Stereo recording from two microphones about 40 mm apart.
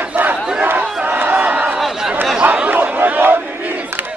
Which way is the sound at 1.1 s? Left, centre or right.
Right.